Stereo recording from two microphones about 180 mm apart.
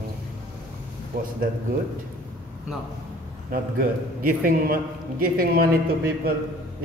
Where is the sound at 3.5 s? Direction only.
50° right (ahead or behind).